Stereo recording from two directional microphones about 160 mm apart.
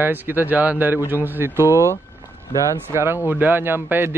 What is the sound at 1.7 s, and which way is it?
Speech, 20° left (ahead or behind).